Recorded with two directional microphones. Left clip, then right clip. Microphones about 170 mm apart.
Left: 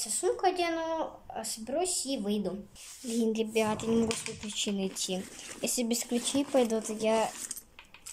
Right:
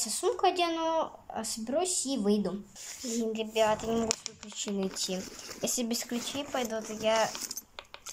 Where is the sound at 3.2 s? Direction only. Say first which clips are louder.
Even; 20° left (ahead or behind).